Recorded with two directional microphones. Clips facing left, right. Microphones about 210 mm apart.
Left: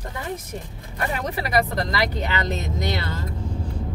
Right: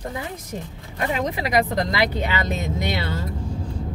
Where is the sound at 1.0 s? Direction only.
15° right (ahead or behind).